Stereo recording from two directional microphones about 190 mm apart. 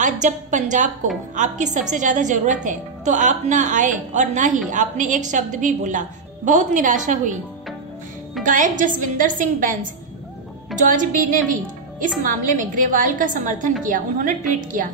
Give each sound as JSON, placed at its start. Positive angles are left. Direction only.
{"t": 0.0, "sound": "a woman's voice", "side_deg": -40}
{"t": 8.5, "sound": "a woman's voice", "side_deg": -40}